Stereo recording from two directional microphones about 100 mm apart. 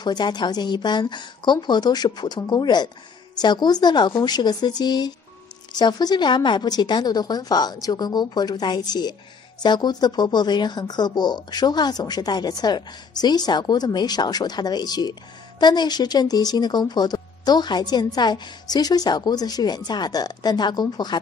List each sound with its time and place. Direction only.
0.0 s speech: 45° left (ahead or behind)